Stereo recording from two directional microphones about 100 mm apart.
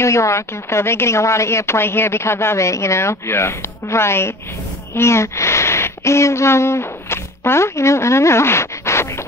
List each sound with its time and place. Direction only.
0.0 s a woman's voice: 30° left (ahead or behind)